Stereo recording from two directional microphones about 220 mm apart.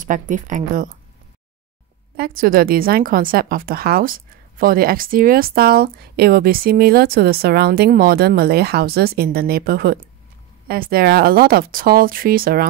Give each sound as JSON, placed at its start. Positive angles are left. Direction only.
{"t": 0.0, "sound": "speech", "side_deg": -35}
{"t": 2.1, "sound": "a woman's voice", "side_deg": -40}